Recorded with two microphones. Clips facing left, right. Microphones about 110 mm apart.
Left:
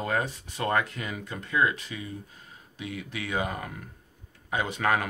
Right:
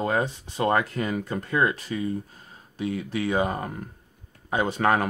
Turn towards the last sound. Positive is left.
turn(degrees=-35)  # may be behind; listen again after turning